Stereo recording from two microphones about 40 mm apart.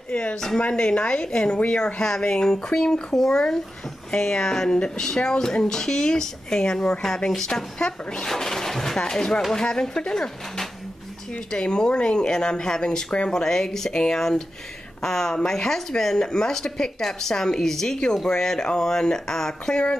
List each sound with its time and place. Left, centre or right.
0.1 s speech: left